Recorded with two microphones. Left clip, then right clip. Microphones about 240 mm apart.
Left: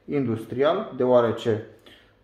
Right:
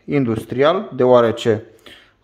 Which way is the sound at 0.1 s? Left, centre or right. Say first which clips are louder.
Right 7 dB; right.